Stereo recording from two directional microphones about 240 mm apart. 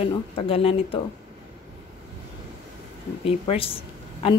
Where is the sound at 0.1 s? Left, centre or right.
Left.